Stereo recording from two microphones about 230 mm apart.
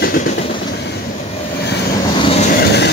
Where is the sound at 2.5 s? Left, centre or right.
Left.